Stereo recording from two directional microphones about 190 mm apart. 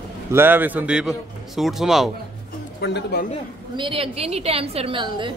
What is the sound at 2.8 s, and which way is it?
Speech, 60° left (ahead or behind).